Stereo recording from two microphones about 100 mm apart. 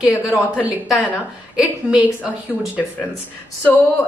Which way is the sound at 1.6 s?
10° right (ahead or behind).